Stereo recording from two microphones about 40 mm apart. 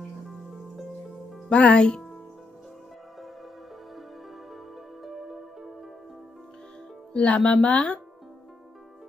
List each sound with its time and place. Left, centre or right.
1.5 s a woman's voice: left
5.0 s music: centre
7.2 s a woman's voice: left